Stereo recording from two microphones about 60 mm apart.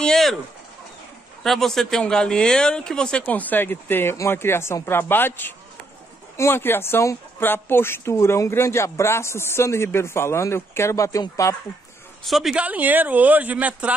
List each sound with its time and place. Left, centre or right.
0.0 s a sound: centre
1.4 s speech: centre; by 5.5 s left
6.3 s speech: left
12.3 s speech: centre
12.5 s speech: right